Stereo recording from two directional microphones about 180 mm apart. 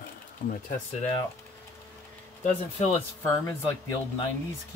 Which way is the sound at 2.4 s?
40° left (ahead or behind).